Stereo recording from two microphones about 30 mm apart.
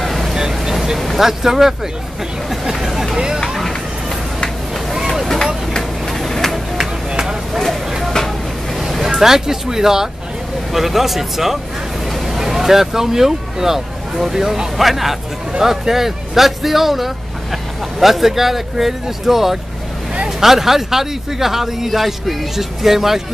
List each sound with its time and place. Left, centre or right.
0.0 s vehicle: centre
0.3 s vehicle: centre
0.9 s vehicle: centre
1.2 s speech: centre
3.4 s a sound: centre
5.2 s vehicle: centre
6.8 s music: right
8.7 s a sound: centre
9.0 s speech: centre